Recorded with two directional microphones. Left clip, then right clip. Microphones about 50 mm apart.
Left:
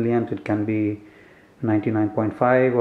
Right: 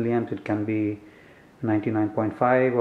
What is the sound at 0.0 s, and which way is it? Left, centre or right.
Speech, centre.